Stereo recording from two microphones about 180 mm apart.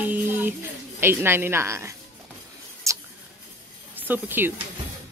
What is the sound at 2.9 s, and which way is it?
Scissors, 15° right (ahead or behind).